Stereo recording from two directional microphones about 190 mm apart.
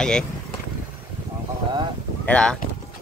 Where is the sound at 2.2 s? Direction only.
5° left (ahead or behind).